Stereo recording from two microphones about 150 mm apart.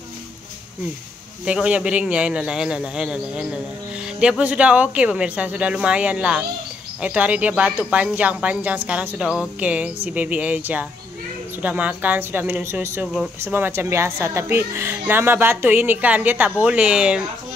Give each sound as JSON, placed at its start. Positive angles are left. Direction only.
{"t": 1.4, "sound": "a man's voice", "side_deg": -5}
{"t": 13.0, "sound": "a man's voice", "side_deg": -5}
{"t": 13.4, "sound": "speech", "side_deg": -15}